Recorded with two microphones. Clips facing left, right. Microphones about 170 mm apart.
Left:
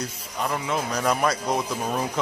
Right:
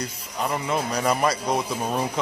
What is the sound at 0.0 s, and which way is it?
Speech, centre (ahead or behind).